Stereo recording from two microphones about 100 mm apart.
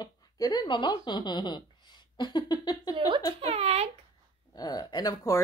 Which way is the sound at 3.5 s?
85° right.